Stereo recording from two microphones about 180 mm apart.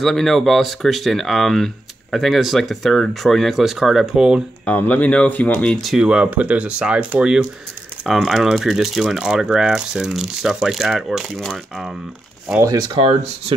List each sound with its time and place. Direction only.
0.0 s speech: centre (ahead or behind)
4.6 s speech: 10° left (ahead or behind)
12.4 s speech: 10° right (ahead or behind)
12.7 s speech: 25° right (ahead or behind)